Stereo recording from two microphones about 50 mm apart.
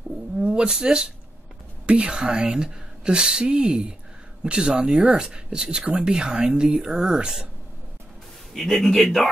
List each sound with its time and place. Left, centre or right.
0.4 s speech: right
8.5 s speech: centre